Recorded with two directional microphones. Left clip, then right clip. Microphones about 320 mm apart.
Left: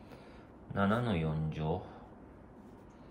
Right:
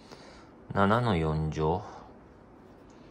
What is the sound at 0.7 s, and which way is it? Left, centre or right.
Speech, right.